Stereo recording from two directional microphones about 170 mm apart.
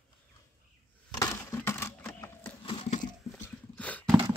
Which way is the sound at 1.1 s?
20° left (ahead or behind).